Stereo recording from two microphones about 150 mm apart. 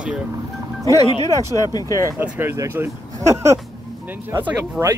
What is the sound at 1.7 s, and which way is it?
Speech, 25° left (ahead or behind).